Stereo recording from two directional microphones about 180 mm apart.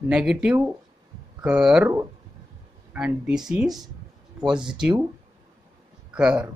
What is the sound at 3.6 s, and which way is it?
Speech, 20° right (ahead or behind).